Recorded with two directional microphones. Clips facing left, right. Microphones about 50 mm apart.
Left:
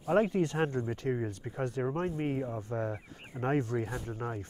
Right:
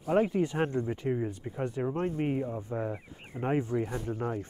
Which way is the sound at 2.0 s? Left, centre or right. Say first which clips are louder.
Right 2 dB; right.